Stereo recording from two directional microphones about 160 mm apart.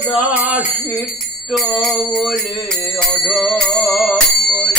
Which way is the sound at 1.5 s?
Centre (ahead or behind).